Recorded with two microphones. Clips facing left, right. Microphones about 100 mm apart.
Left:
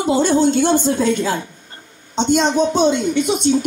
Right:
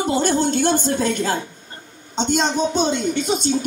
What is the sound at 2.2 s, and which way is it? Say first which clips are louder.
Speech: left 4 dB; 70° left (ahead or behind).